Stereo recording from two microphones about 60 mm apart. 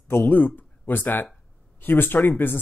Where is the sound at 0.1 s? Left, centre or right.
Left.